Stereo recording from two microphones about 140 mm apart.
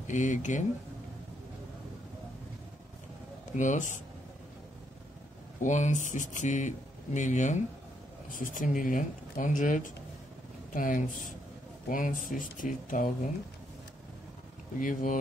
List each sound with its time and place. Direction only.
0.0 s speech: 60° left (ahead or behind)
3.5 s speech: 60° left (ahead or behind)
5.6 s speech: 60° left (ahead or behind)
8.3 s speech: 70° left (ahead or behind)
14.8 s speech: 70° left (ahead or behind)